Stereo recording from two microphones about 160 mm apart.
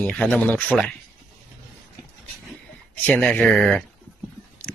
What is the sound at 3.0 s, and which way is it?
Speech, 10° left (ahead or behind).